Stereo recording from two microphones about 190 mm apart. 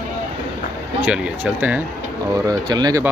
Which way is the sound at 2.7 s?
20° right (ahead or behind).